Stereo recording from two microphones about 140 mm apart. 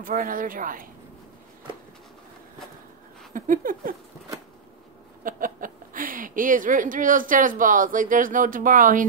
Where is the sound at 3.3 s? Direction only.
70° right (ahead or behind).